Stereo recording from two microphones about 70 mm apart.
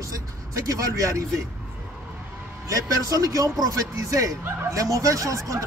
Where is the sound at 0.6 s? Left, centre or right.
Right.